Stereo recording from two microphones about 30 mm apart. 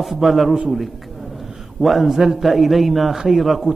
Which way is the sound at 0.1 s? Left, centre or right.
Centre.